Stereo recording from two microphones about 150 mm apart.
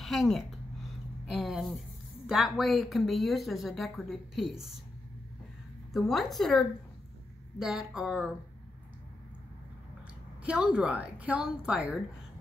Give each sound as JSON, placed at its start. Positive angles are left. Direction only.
{"t": 0.0, "sound": "a woman's voice", "side_deg": 0}
{"t": 1.2, "sound": "a sound", "side_deg": 0}
{"t": 2.2, "sound": "a woman's voice", "side_deg": 0}
{"t": 5.9, "sound": "a woman's voice", "side_deg": 0}
{"t": 10.4, "sound": "a woman's voice", "side_deg": -10}